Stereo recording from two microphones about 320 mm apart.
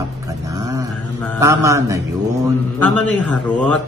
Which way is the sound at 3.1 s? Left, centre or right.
Centre.